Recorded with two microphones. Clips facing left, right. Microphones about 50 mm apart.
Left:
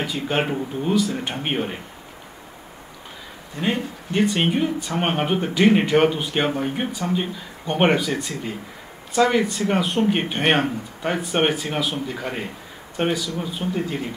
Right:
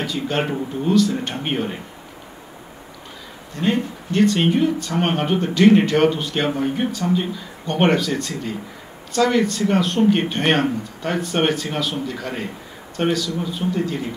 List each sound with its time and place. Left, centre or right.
0.0 s speech: centre
3.5 s speech: centre